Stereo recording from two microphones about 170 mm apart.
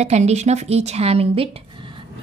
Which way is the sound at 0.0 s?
40° right (ahead or behind).